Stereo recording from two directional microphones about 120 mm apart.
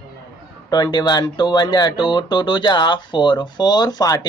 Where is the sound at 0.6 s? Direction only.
35° left (ahead or behind).